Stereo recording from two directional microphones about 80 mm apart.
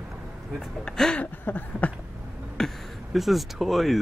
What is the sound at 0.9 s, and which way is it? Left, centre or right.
Speech, centre.